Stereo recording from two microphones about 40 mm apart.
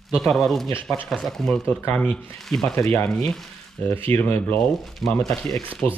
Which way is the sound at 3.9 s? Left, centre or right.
Left.